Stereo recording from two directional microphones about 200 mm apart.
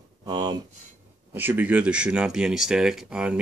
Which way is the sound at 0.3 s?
20° right (ahead or behind).